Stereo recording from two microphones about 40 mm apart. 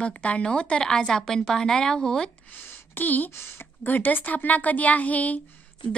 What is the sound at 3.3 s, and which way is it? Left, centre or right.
Speech, left.